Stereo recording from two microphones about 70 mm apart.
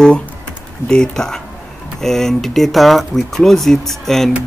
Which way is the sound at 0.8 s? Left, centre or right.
Centre.